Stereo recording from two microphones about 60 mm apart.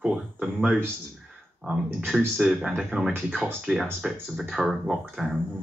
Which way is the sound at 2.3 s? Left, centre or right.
Centre.